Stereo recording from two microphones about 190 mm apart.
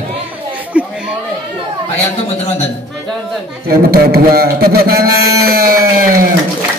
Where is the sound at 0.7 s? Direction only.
5° right (ahead or behind).